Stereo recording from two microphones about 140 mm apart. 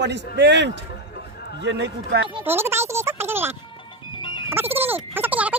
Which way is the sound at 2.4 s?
15° right (ahead or behind).